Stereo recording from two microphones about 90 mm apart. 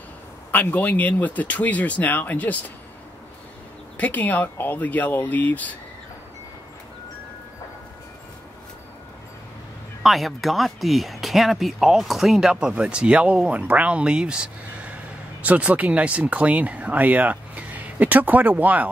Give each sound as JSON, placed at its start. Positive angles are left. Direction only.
{"t": 0.5, "sound": "speech", "side_deg": 20}
{"t": 3.9, "sound": "speech", "side_deg": 15}
{"t": 10.0, "sound": "speech", "side_deg": 0}